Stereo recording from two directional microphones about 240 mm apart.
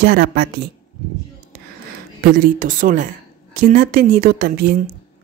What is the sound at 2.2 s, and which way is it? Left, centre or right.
Speech, right.